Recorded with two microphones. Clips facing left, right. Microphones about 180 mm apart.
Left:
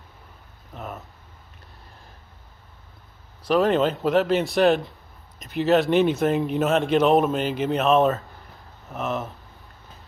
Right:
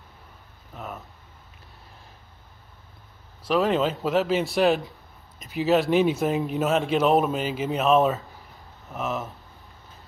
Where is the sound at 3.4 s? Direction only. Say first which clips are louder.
Left 3 dB; centre (ahead or behind).